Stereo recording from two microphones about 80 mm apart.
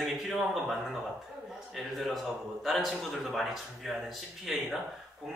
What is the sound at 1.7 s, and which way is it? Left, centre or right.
Speech, centre.